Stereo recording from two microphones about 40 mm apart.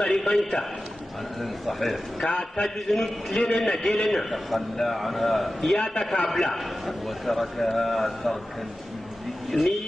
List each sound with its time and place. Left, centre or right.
0.0 s a man's voice: centre
1.7 s a man's voice: centre
9.5 s a man's voice: centre